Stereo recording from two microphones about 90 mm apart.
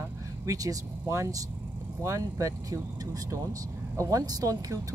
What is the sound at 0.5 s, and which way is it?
Speech, 35° right (ahead or behind).